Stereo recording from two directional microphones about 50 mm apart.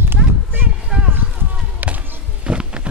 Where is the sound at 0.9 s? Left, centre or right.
Centre.